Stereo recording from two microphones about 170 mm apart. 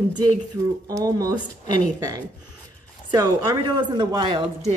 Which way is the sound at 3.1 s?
25° right (ahead or behind).